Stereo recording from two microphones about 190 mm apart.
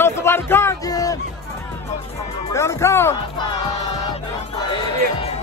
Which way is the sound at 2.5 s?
15° left (ahead or behind).